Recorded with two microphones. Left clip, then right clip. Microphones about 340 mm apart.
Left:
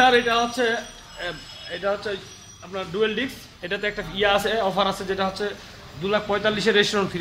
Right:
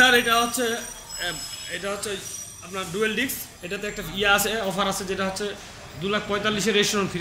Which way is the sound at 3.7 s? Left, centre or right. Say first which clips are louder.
Left 4 dB; left.